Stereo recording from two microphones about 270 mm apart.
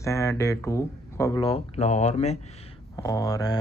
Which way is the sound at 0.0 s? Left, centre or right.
Centre.